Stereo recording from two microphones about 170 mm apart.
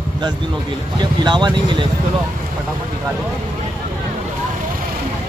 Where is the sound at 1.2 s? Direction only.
25° right (ahead or behind).